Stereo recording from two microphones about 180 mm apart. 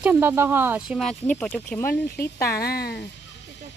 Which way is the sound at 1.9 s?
60° left (ahead or behind).